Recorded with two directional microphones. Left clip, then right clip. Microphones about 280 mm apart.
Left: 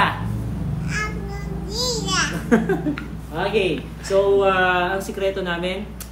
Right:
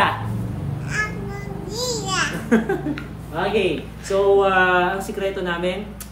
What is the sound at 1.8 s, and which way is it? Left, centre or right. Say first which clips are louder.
Babbling: left 1 dB; centre.